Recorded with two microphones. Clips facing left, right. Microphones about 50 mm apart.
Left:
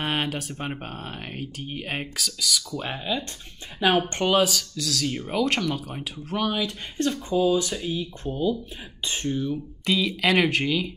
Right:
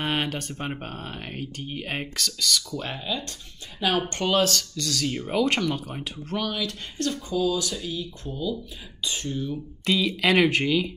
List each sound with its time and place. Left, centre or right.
0.0 s speech: centre
6.4 s speech: centre
9.3 s speech: centre